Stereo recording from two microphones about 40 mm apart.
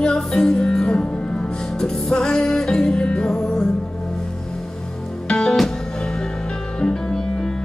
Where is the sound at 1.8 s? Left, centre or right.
Centre.